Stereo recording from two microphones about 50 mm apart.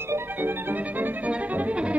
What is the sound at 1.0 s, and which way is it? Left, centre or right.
Music, right.